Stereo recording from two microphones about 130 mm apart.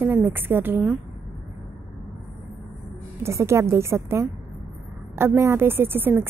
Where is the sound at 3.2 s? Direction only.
20° right (ahead or behind).